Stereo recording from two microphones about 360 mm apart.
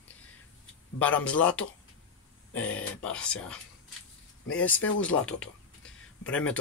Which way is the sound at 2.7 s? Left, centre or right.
Centre.